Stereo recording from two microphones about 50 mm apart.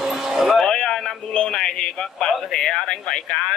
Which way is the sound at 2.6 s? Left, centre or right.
Centre.